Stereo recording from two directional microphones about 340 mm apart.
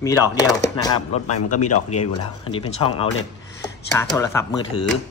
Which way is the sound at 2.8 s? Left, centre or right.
Centre.